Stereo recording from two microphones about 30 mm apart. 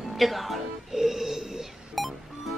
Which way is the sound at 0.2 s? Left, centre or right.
Centre.